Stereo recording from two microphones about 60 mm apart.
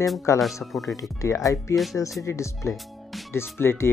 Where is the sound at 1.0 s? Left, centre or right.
Left.